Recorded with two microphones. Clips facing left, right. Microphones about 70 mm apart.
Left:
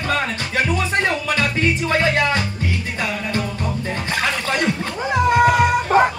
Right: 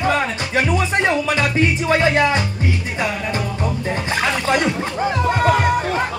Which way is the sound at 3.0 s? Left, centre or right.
Centre.